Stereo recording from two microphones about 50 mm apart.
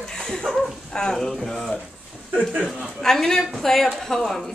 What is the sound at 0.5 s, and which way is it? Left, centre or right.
Speech, centre.